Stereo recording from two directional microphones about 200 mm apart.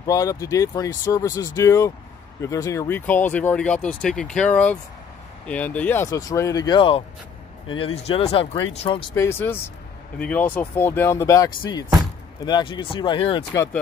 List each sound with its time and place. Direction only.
0.0 s speech: 15° left (ahead or behind)
9.1 s speech: 15° left (ahead or behind)